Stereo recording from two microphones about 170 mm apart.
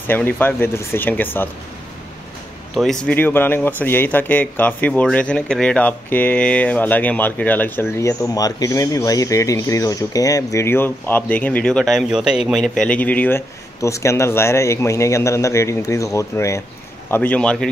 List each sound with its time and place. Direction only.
0.1 s speech: 10° left (ahead or behind)
2.7 s speech: centre (ahead or behind)